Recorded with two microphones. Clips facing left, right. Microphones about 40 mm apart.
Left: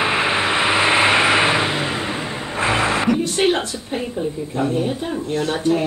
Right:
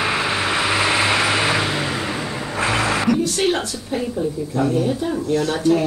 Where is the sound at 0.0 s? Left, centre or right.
Left.